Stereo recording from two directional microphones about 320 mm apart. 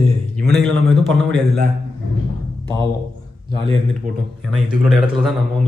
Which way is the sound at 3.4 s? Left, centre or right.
Centre.